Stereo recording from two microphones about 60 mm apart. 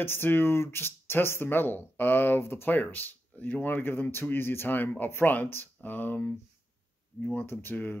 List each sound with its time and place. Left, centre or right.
0.0 s speech: left
2.7 s speech: left